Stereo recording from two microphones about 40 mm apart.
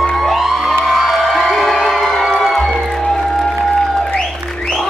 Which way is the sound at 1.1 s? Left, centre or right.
Centre.